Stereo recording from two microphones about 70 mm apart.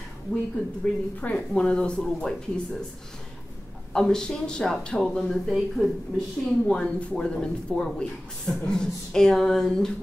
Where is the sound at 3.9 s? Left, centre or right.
Centre.